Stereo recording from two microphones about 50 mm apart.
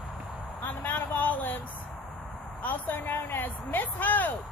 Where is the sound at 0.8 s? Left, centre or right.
Left.